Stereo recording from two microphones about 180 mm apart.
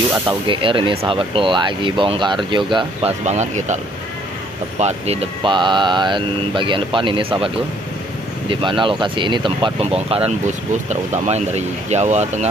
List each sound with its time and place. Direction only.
0.3 s speech: 30° right (ahead or behind)